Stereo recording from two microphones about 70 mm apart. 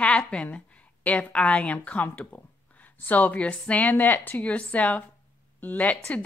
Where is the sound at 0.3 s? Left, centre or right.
Centre.